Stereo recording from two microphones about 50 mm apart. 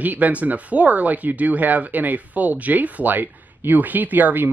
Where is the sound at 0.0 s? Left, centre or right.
Right.